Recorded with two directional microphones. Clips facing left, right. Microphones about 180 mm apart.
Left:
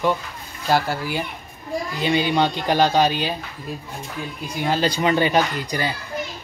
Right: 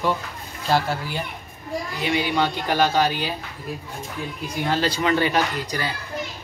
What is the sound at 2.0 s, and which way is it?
A man's voice, 25° left (ahead or behind).